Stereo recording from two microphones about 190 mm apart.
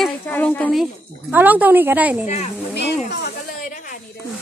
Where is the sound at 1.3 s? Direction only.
10° right (ahead or behind).